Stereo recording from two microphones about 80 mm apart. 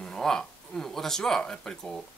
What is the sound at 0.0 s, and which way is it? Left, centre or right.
Speech, centre.